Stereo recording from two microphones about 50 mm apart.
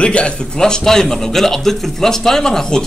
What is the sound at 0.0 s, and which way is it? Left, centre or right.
A man's voice, left.